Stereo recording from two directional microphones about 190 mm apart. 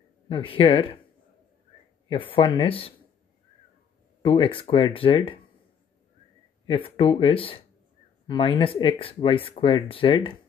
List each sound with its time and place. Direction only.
0.3 s speech: 30° left (ahead or behind)
2.0 s speech: 30° left (ahead or behind)
4.2 s speech: 30° left (ahead or behind)
6.6 s speech: 30° left (ahead or behind)